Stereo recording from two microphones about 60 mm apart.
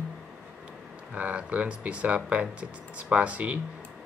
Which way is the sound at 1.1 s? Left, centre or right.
Right.